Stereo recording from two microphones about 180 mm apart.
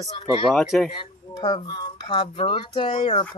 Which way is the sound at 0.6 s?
Centre (ahead or behind).